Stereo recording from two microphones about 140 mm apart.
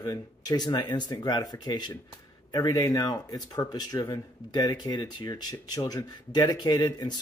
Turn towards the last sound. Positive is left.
turn(degrees=30)  # may be behind; listen again after turning